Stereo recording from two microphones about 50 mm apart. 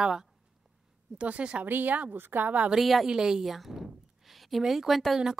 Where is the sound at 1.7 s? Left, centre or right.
Right.